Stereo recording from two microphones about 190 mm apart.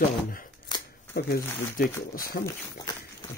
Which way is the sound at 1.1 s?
55° left (ahead or behind).